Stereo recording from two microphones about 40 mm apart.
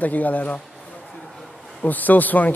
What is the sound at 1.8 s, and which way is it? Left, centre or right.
Speech, left.